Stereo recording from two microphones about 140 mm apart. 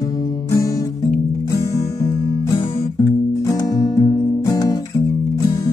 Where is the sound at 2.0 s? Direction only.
25° left (ahead or behind).